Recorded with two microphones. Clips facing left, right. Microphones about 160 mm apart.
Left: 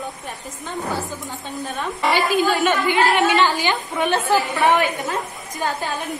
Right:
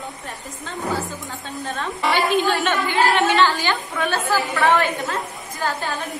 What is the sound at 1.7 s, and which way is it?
Speech, 5° left (ahead or behind).